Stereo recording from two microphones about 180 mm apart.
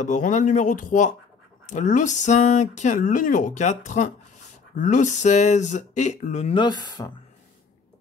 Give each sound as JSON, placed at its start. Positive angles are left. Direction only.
{"t": 0.0, "sound": "speech", "side_deg": 45}
{"t": 6.5, "sound": "speech", "side_deg": 25}